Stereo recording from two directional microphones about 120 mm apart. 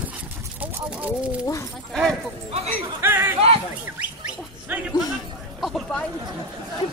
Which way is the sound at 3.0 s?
20° right (ahead or behind).